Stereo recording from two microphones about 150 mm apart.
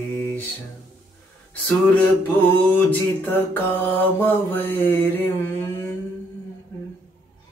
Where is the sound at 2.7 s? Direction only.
10° left (ahead or behind).